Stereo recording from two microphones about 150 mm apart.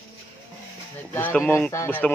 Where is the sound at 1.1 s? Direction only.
10° left (ahead or behind).